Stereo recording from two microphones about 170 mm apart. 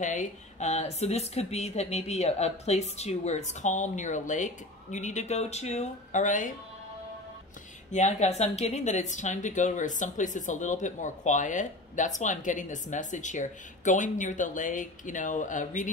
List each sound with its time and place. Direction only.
0.0 s speech: 45° left (ahead or behind)
7.9 s speech: 40° left (ahead or behind)